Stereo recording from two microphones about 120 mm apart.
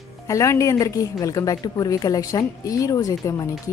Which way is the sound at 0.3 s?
25° left (ahead or behind).